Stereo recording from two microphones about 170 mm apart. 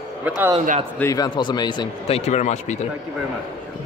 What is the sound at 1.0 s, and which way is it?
Speech, 20° left (ahead or behind).